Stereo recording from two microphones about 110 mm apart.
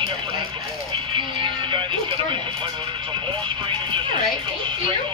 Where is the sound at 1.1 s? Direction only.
50° right (ahead or behind).